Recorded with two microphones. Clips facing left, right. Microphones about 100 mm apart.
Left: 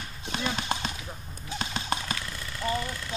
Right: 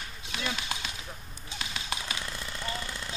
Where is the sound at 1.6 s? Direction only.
40° left (ahead or behind).